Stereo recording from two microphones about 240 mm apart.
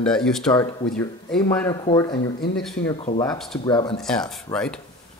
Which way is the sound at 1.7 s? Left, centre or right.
Centre.